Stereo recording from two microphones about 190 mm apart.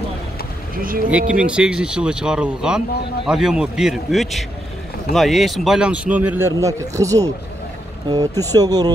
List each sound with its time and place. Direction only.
1.1 s speech: 5° right (ahead or behind)